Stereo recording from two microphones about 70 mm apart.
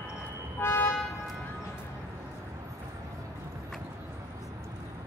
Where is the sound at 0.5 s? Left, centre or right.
Left.